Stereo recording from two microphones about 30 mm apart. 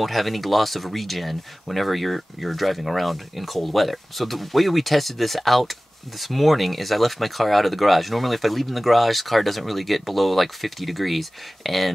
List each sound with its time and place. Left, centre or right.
0.0 s speech: centre